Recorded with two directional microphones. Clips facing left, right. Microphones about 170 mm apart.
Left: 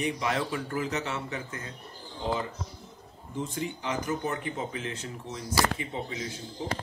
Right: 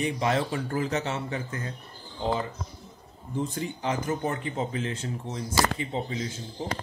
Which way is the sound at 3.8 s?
35° right (ahead or behind).